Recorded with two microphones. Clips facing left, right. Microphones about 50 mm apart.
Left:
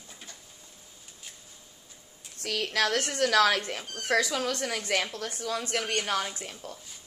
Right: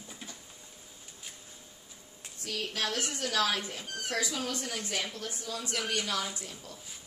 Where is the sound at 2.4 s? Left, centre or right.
Left.